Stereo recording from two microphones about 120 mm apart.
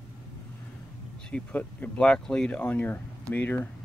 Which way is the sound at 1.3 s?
15° left (ahead or behind).